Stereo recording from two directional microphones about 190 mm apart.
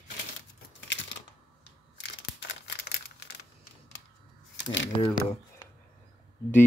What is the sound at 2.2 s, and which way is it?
Crumpling, 65° left (ahead or behind).